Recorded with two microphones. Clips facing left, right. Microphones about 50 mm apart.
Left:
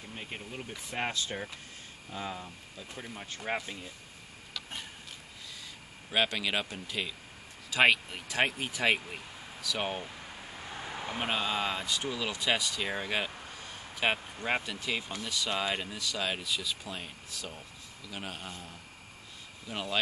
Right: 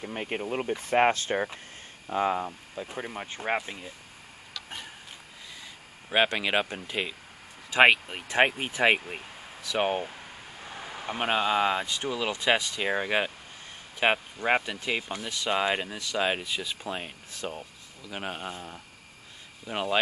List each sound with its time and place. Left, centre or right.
0.0 s speech: right
6.0 s speech: right
10.8 s a sound: centre
11.1 s speech: right